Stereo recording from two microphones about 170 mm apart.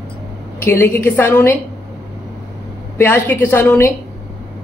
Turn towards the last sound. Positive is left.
turn(degrees=10)  # may be behind; listen again after turning